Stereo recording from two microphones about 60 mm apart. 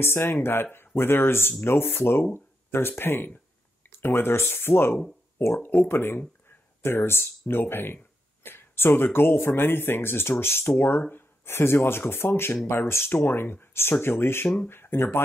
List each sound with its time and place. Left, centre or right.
0.0 s speech: left
2.3 s a sound: left
3.0 s speech: left